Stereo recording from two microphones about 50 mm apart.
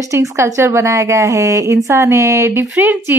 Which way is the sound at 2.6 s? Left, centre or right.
Right.